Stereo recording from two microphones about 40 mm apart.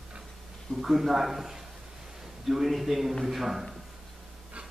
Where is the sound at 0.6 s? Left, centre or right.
Centre.